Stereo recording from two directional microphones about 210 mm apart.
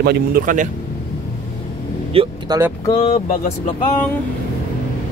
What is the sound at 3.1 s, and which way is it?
Speech, 40° left (ahead or behind).